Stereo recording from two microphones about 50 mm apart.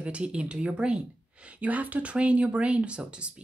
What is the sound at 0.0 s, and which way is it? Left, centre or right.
A woman's voice, right.